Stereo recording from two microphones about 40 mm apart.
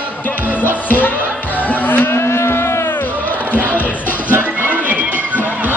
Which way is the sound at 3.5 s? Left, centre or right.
Right.